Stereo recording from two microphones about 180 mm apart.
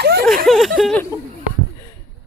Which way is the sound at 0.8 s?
5° left (ahead or behind).